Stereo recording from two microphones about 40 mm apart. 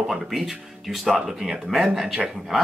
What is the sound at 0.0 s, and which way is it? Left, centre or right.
Speech, centre.